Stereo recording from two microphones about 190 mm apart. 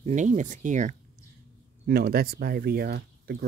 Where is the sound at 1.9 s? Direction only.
55° right (ahead or behind).